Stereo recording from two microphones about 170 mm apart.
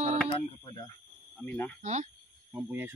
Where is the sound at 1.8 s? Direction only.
45° right (ahead or behind).